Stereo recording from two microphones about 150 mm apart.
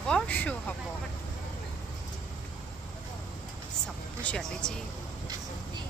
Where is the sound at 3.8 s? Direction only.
5° left (ahead or behind).